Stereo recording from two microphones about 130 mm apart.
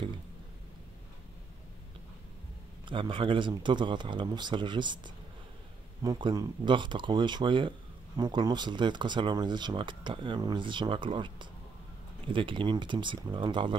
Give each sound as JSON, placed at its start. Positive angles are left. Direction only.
{"t": 2.8, "sound": "speech", "side_deg": -40}